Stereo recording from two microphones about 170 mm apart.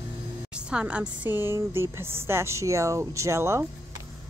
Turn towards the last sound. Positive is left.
turn(degrees=-15)  # may be behind; listen again after turning